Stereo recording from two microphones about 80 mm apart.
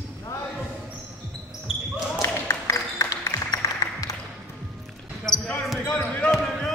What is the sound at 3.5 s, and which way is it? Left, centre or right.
Music, left.